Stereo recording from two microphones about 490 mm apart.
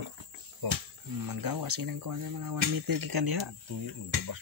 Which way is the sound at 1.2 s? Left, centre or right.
Right.